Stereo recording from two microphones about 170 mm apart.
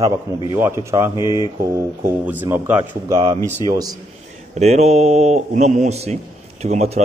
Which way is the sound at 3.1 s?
25° right (ahead or behind).